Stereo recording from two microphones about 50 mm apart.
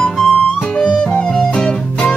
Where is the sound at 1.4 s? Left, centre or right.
Centre.